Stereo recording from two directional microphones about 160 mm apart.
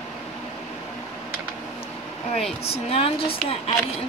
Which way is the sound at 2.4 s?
40° left (ahead or behind).